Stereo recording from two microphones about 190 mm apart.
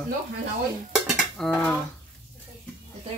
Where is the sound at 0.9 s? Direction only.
Centre (ahead or behind).